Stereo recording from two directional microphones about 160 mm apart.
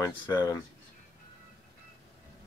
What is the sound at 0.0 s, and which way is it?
Speech, 20° left (ahead or behind).